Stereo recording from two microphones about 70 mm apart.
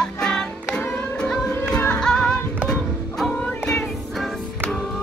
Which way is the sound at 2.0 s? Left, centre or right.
Centre.